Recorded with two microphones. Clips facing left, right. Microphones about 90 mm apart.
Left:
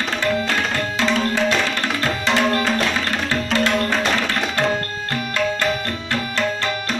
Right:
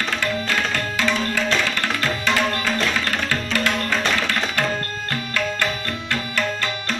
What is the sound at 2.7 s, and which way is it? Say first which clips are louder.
Music: left 1 dB; 15° left (ahead or behind).